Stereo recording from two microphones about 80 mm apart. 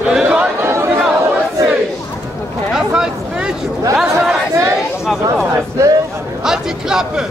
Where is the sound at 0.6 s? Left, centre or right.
Right.